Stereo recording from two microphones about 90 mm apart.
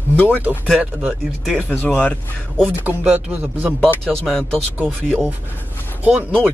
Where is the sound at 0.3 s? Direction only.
20° right (ahead or behind).